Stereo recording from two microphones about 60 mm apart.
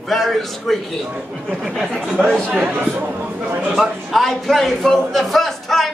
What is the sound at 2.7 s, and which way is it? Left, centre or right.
Speech, right.